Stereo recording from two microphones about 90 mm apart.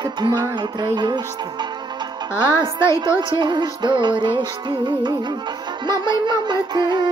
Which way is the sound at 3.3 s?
60° right (ahead or behind).